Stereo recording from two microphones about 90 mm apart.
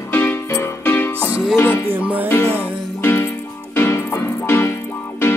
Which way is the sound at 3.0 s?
25° left (ahead or behind).